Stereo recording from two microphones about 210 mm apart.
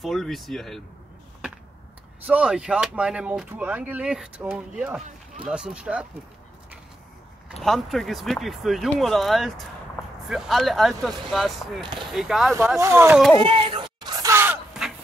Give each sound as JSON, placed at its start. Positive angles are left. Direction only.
{"t": 0.0, "sound": "speech", "side_deg": 0}
{"t": 2.2, "sound": "speech", "side_deg": -5}
{"t": 7.6, "sound": "speech", "side_deg": 0}
{"t": 11.8, "sound": "speech", "side_deg": -20}
{"t": 12.1, "sound": "speech", "side_deg": 0}
{"t": 12.7, "sound": "speech", "side_deg": -15}
{"t": 13.5, "sound": "a sound", "side_deg": -25}